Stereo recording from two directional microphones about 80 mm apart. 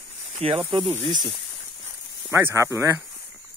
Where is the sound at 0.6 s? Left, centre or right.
Right.